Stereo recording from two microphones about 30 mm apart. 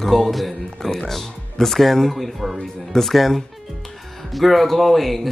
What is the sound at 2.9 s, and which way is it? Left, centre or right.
Speech, centre.